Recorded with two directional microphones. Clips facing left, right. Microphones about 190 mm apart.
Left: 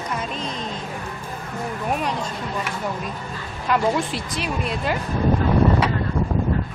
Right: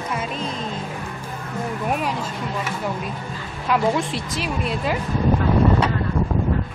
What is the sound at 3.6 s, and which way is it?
Speech, centre (ahead or behind).